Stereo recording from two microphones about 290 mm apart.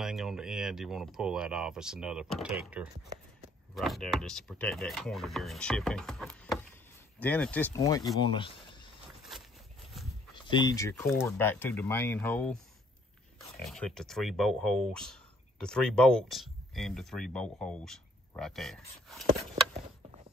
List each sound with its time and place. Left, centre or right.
0.0 s speech: centre
8.2 s speech: centre
10.3 s speech: centre
13.6 s speech: centre